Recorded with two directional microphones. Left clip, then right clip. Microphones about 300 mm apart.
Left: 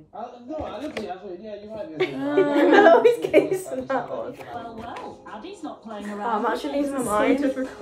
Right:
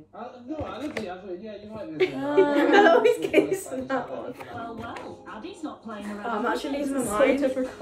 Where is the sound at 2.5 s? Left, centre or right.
Left.